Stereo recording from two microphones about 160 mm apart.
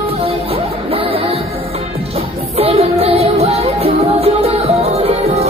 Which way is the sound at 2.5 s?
40° right (ahead or behind).